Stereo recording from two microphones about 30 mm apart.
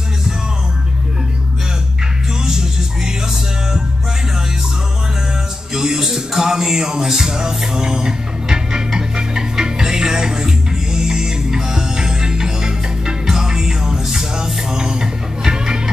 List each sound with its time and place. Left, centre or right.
5.7 s music: centre